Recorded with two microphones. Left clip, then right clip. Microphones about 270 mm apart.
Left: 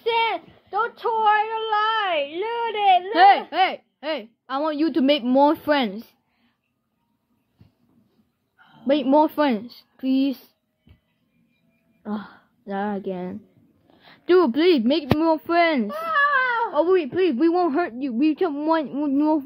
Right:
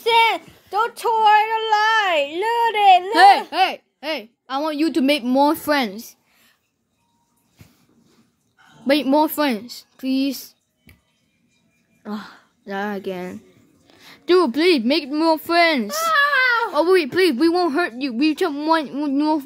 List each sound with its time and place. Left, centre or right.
0.0 s a sound: right
3.1 s a woman's voice: centre
8.8 s a woman's voice: centre
12.0 s a woman's voice: centre
15.9 s babbling: right
16.7 s a woman's voice: right